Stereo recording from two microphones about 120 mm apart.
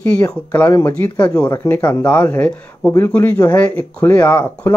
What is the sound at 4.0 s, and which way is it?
Speech, 25° left (ahead or behind).